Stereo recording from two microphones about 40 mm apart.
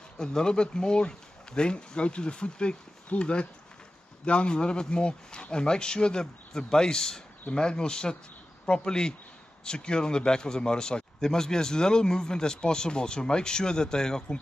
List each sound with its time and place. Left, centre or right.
0.2 s speech: centre